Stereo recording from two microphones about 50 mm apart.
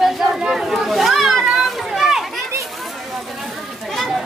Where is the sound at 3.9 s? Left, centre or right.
Centre.